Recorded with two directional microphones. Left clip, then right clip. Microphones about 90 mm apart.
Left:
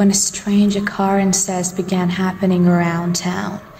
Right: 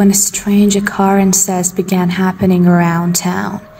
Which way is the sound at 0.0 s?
40° right (ahead or behind).